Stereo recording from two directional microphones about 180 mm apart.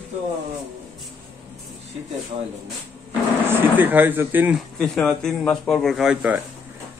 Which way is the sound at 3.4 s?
10° right (ahead or behind).